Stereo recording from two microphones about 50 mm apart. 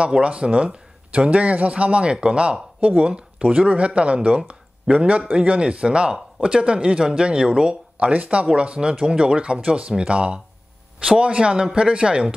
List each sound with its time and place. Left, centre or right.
0.0 s speech: right